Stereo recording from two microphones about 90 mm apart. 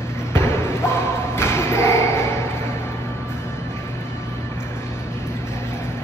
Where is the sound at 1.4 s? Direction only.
30° left (ahead or behind).